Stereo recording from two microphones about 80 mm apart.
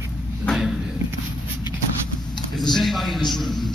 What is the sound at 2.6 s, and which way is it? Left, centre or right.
A man's voice, centre.